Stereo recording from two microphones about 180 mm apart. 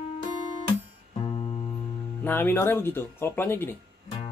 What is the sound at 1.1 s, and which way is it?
Music, 35° left (ahead or behind).